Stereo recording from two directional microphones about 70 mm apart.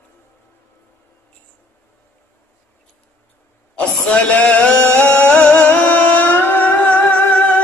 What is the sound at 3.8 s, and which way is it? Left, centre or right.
Music, centre.